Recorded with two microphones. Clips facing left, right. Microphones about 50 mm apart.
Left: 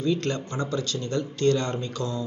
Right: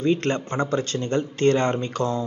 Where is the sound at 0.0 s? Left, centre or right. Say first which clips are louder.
Right 4 dB; right.